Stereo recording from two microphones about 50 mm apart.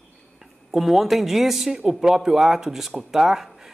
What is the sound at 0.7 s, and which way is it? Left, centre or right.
Speech, centre.